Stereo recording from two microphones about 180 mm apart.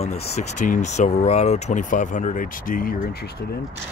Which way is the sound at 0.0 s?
35° left (ahead or behind).